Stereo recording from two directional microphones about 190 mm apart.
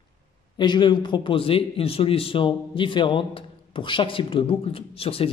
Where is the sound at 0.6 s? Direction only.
25° left (ahead or behind).